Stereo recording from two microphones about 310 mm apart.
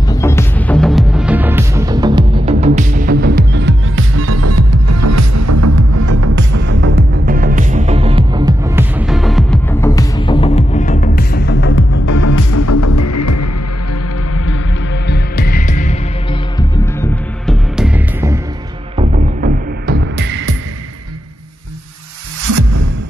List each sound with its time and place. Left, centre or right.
0.0 s music: centre; by 6.6 s right
6.6 s music: right; by 12.0 s left
12.1 s music: left
14.3 s music: left
15.0 s music: left
16.5 s music: centre
18.9 s music: right